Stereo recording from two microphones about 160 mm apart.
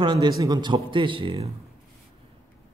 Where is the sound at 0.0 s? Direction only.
30° right (ahead or behind).